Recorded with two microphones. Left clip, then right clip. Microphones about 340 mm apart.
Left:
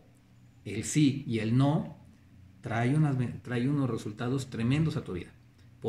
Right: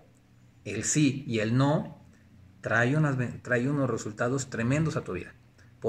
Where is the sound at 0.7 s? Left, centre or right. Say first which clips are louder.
Right 1 dB; centre.